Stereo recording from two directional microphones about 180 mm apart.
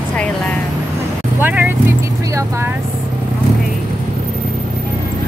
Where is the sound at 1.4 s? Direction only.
10° right (ahead or behind).